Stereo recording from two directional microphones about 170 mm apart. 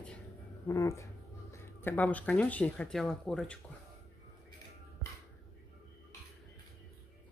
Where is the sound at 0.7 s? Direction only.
20° left (ahead or behind).